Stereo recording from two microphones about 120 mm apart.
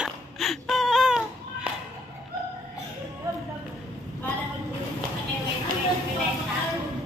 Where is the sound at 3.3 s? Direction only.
30° right (ahead or behind).